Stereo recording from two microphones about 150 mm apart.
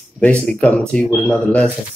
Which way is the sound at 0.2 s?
10° left (ahead or behind).